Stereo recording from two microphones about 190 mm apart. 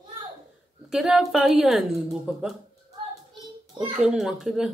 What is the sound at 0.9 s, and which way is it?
A woman's voice, 5° right (ahead or behind).